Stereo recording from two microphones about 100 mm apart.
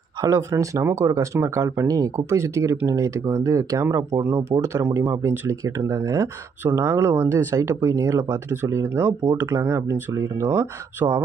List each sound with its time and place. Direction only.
0.2 s speech: 30° right (ahead or behind)